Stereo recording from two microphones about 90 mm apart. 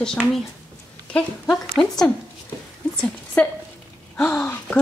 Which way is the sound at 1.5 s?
10° left (ahead or behind).